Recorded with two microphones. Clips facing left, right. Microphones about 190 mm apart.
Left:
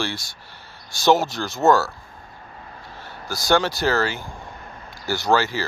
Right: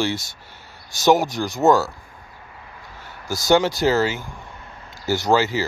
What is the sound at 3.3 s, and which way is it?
Speech, 20° right (ahead or behind).